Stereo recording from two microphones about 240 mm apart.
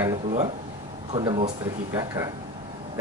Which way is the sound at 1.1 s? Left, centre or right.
Right.